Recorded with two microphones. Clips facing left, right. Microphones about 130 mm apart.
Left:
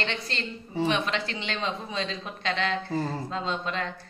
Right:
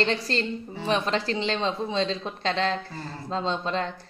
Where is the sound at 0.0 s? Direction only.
35° right (ahead or behind).